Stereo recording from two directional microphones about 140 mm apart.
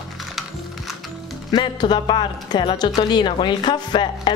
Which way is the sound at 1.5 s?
30° left (ahead or behind).